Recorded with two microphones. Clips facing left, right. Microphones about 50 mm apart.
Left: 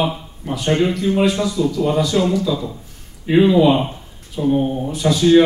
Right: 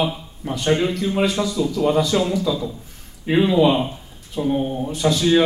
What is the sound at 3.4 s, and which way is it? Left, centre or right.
Speech, centre.